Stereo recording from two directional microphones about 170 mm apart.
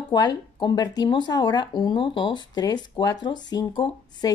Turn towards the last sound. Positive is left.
turn(degrees=25)  # may be behind; listen again after turning